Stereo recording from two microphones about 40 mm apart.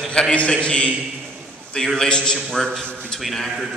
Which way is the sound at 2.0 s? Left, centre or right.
Centre.